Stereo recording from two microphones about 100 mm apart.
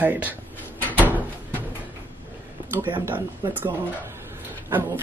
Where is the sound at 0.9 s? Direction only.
20° right (ahead or behind).